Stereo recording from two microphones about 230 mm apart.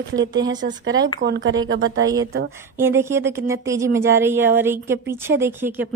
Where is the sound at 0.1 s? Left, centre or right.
Right.